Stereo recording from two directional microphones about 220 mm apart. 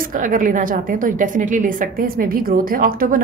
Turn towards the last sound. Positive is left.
turn(degrees=-40)  # may be behind; listen again after turning